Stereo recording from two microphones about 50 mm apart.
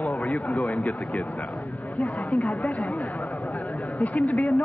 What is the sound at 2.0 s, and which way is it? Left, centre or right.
A man's voice, left.